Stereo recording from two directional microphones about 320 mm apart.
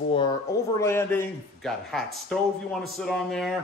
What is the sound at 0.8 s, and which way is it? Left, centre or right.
A man's voice, centre.